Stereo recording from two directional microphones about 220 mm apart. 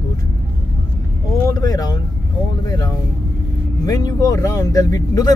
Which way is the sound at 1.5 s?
15° left (ahead or behind).